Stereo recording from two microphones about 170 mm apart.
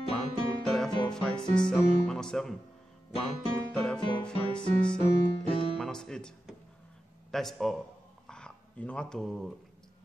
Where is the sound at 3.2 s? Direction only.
Centre (ahead or behind).